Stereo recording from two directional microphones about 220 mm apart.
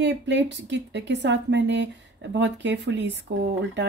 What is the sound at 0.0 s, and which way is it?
A woman's voice, 55° right (ahead or behind).